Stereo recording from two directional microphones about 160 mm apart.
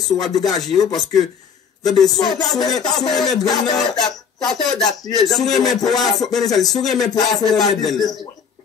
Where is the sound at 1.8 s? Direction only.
Centre (ahead or behind).